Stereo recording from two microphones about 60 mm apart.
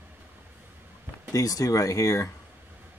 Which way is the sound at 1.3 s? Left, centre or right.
Left.